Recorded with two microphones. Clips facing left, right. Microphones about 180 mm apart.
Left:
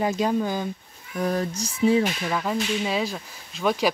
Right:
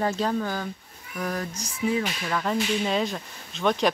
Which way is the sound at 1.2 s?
25° left (ahead or behind).